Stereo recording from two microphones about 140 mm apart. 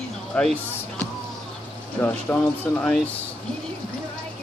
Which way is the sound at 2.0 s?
10° left (ahead or behind).